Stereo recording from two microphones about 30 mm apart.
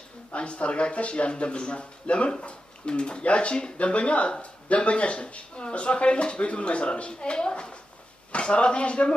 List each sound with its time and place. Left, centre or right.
0.3 s speech: left
3.7 s speech: left